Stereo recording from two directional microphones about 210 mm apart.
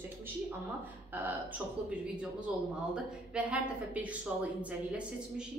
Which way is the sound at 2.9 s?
5° right (ahead or behind).